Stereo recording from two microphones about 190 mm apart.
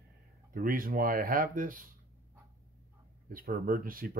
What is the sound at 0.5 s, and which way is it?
Speech, 45° right (ahead or behind).